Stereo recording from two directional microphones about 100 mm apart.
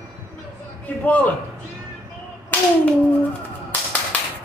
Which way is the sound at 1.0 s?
15° left (ahead or behind).